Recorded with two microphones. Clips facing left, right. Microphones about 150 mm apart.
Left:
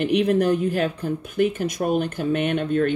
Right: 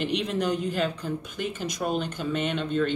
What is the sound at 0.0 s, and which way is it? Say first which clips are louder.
Speech: left 8 dB; 55° left (ahead or behind).